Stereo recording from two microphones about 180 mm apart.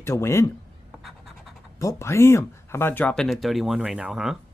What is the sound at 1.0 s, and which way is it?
Writing, centre (ahead or behind).